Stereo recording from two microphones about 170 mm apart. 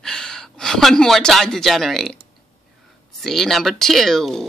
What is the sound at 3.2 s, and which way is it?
Speech, centre (ahead or behind).